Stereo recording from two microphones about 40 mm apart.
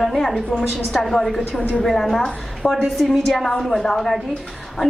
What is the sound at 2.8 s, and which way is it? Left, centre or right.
Speech, centre.